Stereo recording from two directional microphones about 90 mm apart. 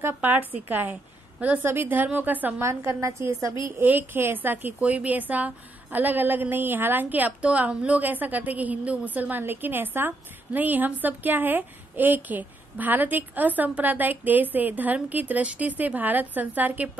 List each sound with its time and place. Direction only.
0.0 s a woman's voice: 20° right (ahead or behind)
2.6 s a woman's voice: 30° right (ahead or behind)
3.8 s a woman's voice: 20° right (ahead or behind)